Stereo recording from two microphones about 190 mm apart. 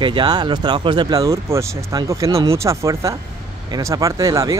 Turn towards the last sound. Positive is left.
turn(degrees=-20)  # may be behind; listen again after turning